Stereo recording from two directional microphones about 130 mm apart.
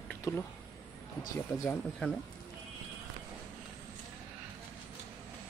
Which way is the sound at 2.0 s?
10° left (ahead or behind).